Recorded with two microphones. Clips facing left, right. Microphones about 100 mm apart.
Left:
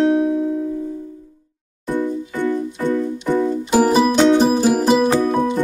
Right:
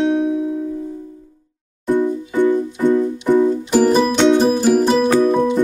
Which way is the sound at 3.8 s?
5° left (ahead or behind).